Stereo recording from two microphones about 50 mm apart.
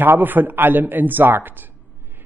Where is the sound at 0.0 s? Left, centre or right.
Right.